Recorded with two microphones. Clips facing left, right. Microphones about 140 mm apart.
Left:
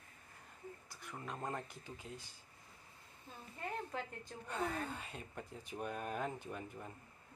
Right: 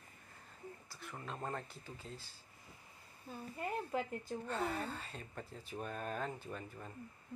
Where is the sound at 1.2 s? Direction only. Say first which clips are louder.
Even; 15° left (ahead or behind).